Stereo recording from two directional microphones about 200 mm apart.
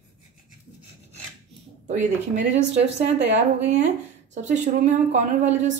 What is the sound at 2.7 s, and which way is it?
Speech, 35° right (ahead or behind).